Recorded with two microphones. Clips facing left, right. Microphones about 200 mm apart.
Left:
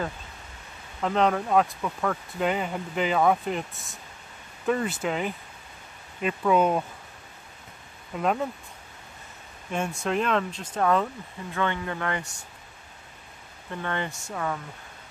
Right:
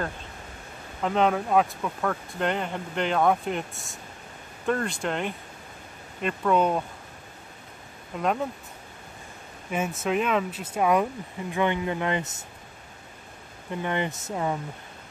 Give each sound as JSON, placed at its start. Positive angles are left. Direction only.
{"t": 1.0, "sound": "speech", "side_deg": 0}
{"t": 8.2, "sound": "speech", "side_deg": 0}
{"t": 9.7, "sound": "speech", "side_deg": -5}
{"t": 13.7, "sound": "speech", "side_deg": -15}